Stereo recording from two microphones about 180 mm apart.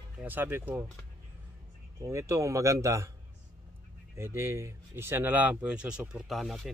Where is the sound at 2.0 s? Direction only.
15° right (ahead or behind).